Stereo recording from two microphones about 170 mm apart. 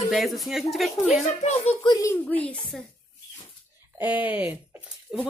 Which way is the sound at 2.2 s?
10° left (ahead or behind).